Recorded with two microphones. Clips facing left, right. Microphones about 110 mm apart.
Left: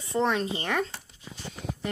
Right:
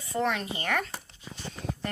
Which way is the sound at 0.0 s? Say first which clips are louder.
Left 3 dB; 25° left (ahead or behind).